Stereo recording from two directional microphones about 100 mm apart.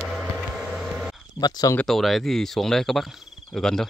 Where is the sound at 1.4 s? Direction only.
40° left (ahead or behind).